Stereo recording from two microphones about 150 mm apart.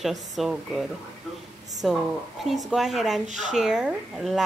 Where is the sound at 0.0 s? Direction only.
Centre (ahead or behind).